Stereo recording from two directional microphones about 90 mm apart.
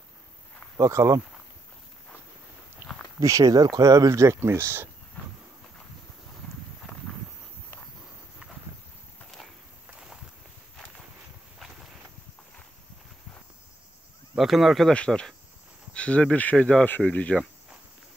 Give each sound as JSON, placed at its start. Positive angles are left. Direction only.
{"t": 0.7, "sound": "speech", "side_deg": -35}
{"t": 3.2, "sound": "speech", "side_deg": -40}
{"t": 9.8, "sound": "a sound", "side_deg": -10}
{"t": 14.3, "sound": "speech", "side_deg": 0}